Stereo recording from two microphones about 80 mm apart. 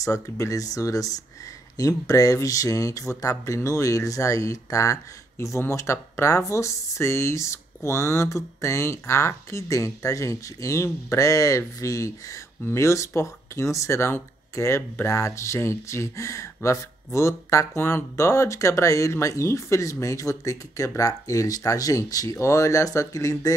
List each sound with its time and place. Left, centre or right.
0.0 s speech: left